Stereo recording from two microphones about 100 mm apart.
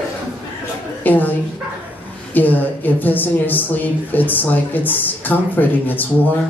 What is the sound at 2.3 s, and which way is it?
A man's voice, 20° left (ahead or behind).